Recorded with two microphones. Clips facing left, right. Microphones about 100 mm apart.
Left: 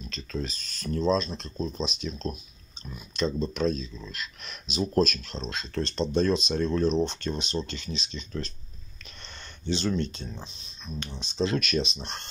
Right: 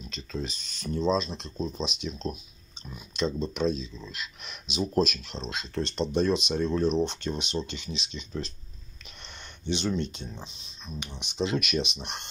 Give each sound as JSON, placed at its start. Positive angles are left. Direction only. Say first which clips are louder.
{"t": 0.1, "sound": "speech", "louder": "left 1 dB", "side_deg": -10}
{"t": 9.7, "sound": "speech", "louder": "left 1 dB", "side_deg": -15}